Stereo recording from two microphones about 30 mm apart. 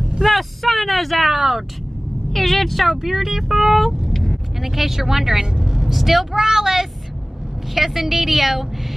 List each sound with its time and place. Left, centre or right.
0.2 s vehicle: centre
1.3 s speech: centre
2.3 s speech: centre
4.1 s vehicle: centre
4.6 s speech: centre